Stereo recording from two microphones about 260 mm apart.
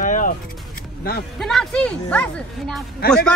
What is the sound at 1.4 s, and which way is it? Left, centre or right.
Speech, centre.